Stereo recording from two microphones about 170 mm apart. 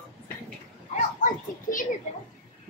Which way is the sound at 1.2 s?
50° left (ahead or behind).